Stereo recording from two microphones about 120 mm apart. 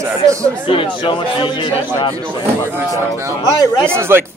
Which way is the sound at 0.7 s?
45° left (ahead or behind).